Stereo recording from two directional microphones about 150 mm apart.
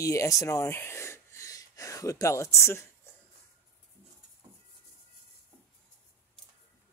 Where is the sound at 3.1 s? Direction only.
15° left (ahead or behind).